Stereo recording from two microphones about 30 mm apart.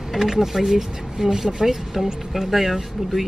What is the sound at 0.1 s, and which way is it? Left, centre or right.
Speech, centre.